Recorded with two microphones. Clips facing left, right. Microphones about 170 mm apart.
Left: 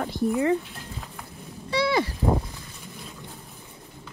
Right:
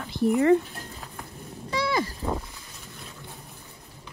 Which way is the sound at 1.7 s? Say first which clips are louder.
Left 3 dB; 45° right (ahead or behind).